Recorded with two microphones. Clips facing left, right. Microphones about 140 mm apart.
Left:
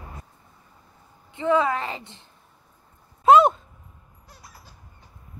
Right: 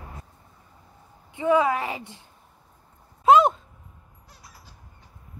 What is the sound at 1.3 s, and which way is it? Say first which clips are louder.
Speech: right 1 dB; 10° right (ahead or behind).